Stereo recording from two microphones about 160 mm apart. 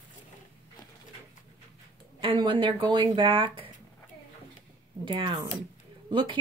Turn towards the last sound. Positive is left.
turn(degrees=-30)  # may be behind; listen again after turning